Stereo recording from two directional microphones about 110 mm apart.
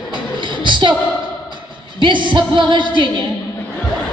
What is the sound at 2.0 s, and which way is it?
Music, 45° right (ahead or behind).